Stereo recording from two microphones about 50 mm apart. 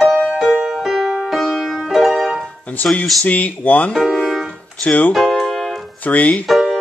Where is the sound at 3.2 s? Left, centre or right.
Left.